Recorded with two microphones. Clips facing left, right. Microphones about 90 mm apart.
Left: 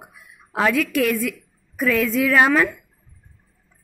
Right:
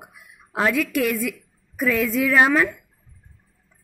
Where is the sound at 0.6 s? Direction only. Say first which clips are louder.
Left 2 dB; 15° right (ahead or behind).